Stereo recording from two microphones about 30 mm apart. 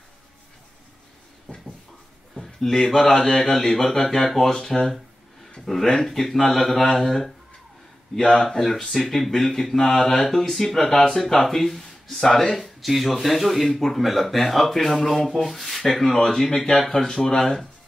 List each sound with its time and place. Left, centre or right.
1.5 s a sound: left
2.3 s a sound: centre
2.8 s speech: centre
8.2 s speech: left
8.5 s speech: centre
12.5 s speech: centre; by 17.4 s left